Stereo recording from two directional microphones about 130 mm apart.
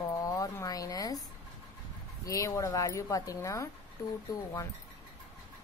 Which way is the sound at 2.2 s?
25° left (ahead or behind).